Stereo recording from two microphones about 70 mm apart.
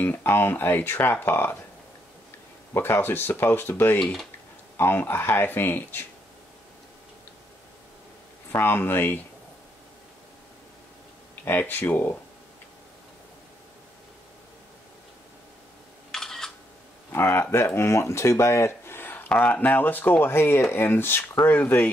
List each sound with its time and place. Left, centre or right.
0.0 s speech: left
2.7 s speech: left
4.0 s speech: centre
4.7 s speech: left
8.5 s speech: left
11.4 s speech: left
16.1 s camera: centre
17.1 s speech: left